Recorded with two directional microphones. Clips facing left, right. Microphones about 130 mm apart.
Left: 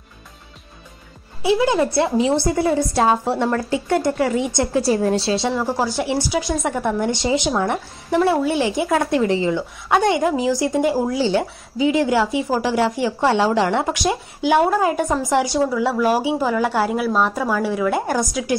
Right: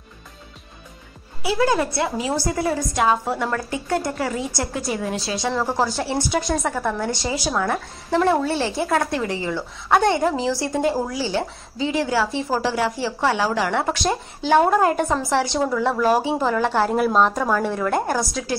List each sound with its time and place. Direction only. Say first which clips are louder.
1.4 s a woman's voice: left 3 dB; 20° left (ahead or behind)
5.8 s a woman's voice: left 1 dB; 15° left (ahead or behind)
8.2 s a woman's voice: left 2 dB; 10° left (ahead or behind)
15.2 s a woman's voice: left 3 dB; 15° left (ahead or behind)